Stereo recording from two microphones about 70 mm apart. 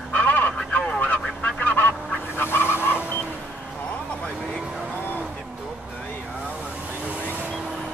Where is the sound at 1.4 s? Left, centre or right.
Left.